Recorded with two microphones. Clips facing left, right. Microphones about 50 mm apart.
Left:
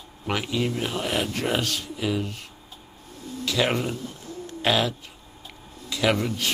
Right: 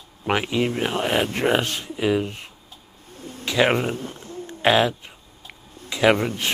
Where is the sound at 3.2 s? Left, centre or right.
Right.